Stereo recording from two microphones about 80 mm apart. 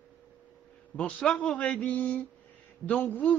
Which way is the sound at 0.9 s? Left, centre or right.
Centre.